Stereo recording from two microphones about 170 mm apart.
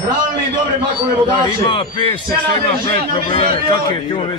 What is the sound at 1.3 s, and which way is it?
Speech, 25° left (ahead or behind).